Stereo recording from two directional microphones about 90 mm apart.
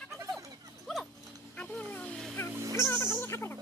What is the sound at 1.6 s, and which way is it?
Wild animals, 15° left (ahead or behind).